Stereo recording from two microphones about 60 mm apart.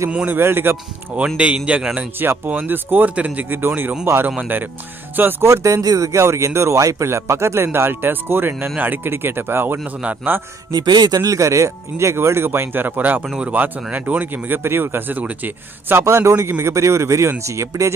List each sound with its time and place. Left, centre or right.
0.3 s speech: right
1.1 s speech: centre
2.0 s speech: right
5.4 s speech: right
10.7 s speech: right
16.1 s speech: right